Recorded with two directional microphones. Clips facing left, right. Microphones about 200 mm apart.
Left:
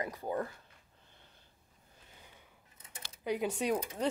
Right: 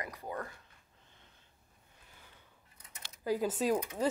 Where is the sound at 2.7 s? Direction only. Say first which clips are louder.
Left 3 dB; 30° left (ahead or behind).